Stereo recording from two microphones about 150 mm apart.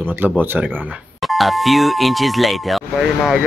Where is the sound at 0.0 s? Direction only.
15° right (ahead or behind).